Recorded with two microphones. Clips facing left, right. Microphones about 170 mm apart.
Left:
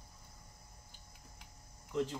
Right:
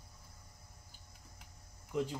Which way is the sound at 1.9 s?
15° right (ahead or behind).